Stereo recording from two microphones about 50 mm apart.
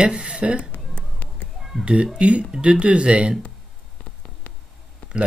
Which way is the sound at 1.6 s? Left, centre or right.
Centre.